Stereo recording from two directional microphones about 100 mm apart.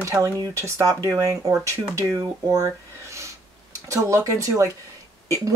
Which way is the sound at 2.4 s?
30° right (ahead or behind).